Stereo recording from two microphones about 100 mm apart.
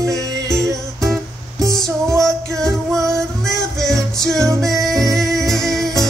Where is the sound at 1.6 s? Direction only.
5° left (ahead or behind).